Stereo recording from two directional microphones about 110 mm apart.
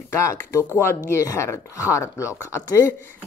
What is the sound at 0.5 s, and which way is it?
Speech, 25° left (ahead or behind).